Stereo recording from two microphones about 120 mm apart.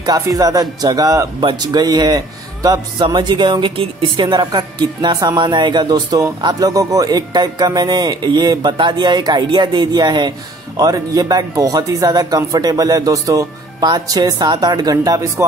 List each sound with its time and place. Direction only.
0.0 s speech: 30° right (ahead or behind)